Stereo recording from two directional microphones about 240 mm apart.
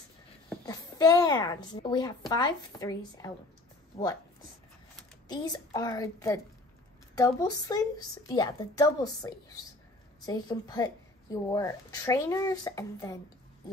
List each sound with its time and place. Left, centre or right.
0.7 s a child's voice: centre
5.3 s a woman's voice: centre